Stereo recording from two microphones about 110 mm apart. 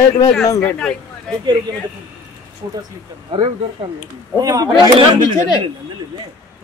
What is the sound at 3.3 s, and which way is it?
Speech, 55° right (ahead or behind).